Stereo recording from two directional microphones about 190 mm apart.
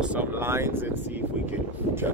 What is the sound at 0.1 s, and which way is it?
Speech, 10° right (ahead or behind).